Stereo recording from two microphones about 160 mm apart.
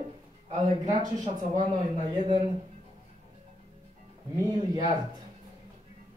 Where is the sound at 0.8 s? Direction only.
25° right (ahead or behind).